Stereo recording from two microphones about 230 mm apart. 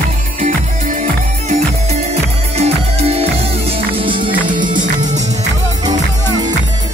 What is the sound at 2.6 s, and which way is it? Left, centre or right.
Music, right.